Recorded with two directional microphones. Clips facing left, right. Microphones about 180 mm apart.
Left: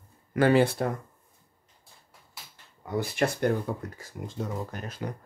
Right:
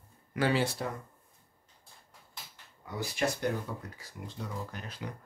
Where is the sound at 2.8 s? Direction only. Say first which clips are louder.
Left 5 dB; 55° left (ahead or behind).